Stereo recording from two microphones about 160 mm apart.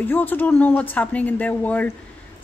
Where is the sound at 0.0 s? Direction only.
10° left (ahead or behind).